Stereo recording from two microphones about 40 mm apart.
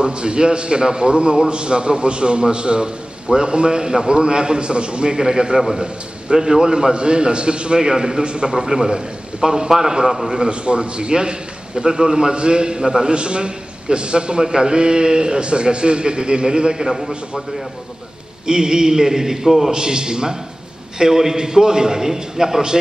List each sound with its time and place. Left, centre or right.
0.0 s a man's voice: right
18.5 s a man's voice: centre